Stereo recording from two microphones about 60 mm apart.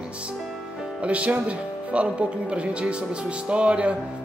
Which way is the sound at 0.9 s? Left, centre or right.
Right.